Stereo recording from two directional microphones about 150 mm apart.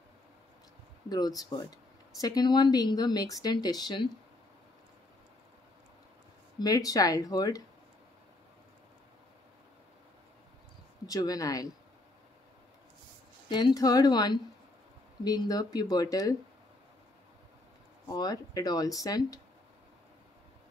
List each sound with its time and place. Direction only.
1.0 s speech: 25° left (ahead or behind)
6.6 s speech: 25° left (ahead or behind)
11.1 s speech: 25° left (ahead or behind)
13.5 s speech: 30° left (ahead or behind)
18.1 s speech: 25° left (ahead or behind)